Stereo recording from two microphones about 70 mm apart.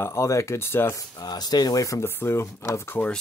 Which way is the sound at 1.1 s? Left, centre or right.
Left.